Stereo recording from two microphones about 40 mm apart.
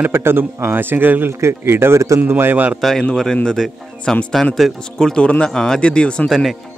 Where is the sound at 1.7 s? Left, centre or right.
Right.